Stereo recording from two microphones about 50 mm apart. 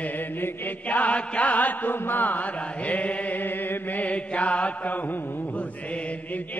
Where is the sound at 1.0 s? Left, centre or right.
Left.